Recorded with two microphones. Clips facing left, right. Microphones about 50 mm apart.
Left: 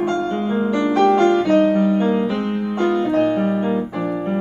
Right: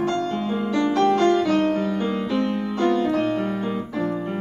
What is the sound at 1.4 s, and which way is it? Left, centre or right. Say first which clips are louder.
Music: left 5 dB; centre.